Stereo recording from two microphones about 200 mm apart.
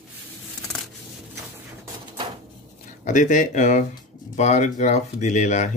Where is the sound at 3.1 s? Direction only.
40° left (ahead or behind).